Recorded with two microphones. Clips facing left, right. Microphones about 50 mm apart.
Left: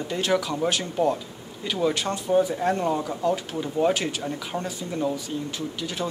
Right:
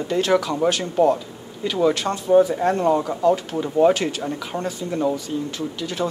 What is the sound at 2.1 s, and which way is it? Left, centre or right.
Speech, right.